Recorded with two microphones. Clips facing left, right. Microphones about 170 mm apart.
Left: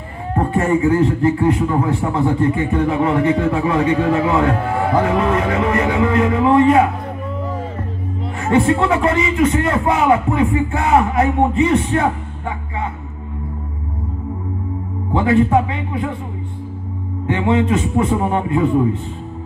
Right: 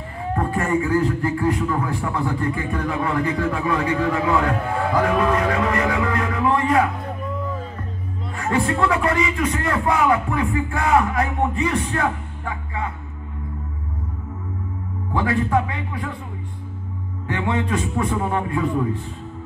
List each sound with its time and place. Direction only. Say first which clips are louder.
0.4 s a man's voice: left 6 dB; 25° left (ahead or behind)
8.4 s a man's voice: left 6 dB; 25° left (ahead or behind)
15.1 s a man's voice: left 6 dB; 25° left (ahead or behind)
17.3 s a man's voice: left 7 dB; 25° left (ahead or behind)